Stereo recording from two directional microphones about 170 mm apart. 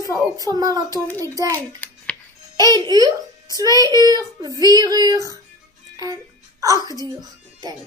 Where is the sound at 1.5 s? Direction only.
10° left (ahead or behind).